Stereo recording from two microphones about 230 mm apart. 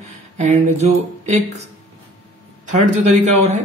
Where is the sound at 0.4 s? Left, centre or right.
Right.